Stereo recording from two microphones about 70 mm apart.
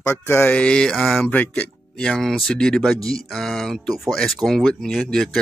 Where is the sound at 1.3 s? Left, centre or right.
Left.